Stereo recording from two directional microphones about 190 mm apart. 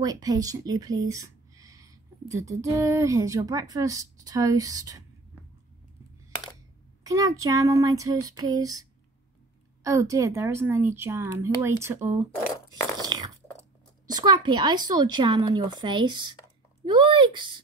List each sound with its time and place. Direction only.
0.0 s speech: 20° right (ahead or behind)
7.0 s speech: 20° right (ahead or behind)
9.8 s speech: 15° right (ahead or behind)
13.0 s crunch: 20° right (ahead or behind)
14.1 s speech: 20° right (ahead or behind)